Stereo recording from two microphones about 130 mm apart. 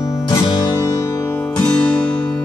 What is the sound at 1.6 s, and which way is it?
Music, 10° left (ahead or behind).